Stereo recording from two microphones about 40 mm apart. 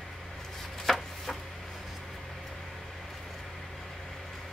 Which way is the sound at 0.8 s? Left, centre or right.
Centre.